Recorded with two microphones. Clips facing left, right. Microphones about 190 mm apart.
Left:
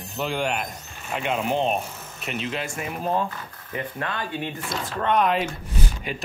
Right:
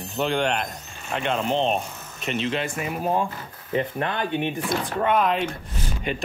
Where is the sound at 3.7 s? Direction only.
20° right (ahead or behind).